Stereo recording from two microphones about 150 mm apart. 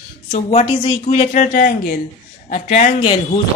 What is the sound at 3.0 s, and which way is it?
Speech, 35° left (ahead or behind).